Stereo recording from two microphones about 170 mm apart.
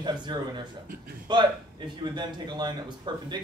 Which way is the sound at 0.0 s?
25° right (ahead or behind).